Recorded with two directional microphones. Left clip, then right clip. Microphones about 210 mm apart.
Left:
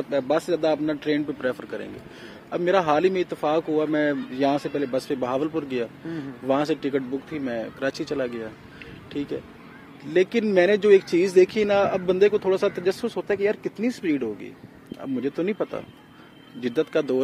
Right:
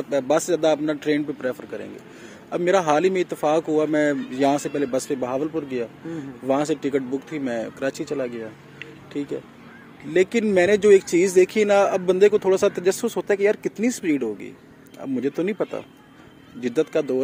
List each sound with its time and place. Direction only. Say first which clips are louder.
0.1 s speech: right 3 dB; 15° right (ahead or behind)
1.4 s speech: even; centre (ahead or behind)
2.5 s speech: right 2 dB; 15° right (ahead or behind)